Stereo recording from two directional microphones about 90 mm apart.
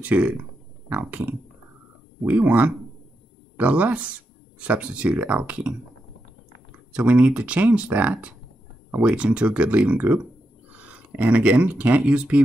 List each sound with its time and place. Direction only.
0.0 s speech: 15° right (ahead or behind)